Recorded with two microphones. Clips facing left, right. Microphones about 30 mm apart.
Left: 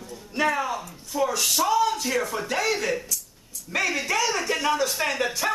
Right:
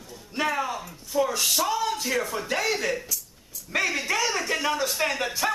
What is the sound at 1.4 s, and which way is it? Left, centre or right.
Speech, centre.